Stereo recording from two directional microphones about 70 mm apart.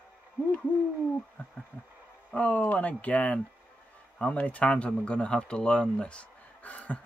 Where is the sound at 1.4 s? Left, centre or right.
Left.